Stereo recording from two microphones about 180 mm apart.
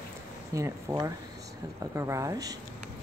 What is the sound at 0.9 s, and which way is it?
Speech, 20° right (ahead or behind).